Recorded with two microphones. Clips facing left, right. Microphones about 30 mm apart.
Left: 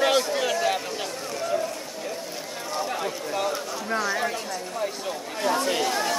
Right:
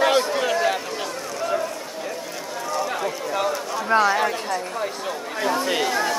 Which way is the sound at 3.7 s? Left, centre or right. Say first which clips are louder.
Right 8 dB; right.